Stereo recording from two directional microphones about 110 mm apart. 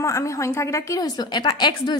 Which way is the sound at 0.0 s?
30° left (ahead or behind).